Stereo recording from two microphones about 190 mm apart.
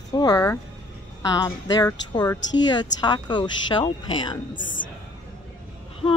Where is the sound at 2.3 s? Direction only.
75° left (ahead or behind).